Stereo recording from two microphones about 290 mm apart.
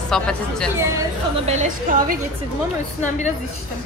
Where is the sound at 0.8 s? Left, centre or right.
Centre.